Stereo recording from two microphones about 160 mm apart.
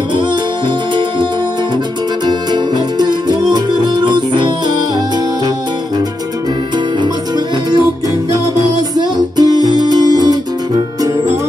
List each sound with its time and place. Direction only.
2.2 s music: 25° right (ahead or behind)
7.0 s music: 25° right (ahead or behind)
9.4 s music: 25° right (ahead or behind)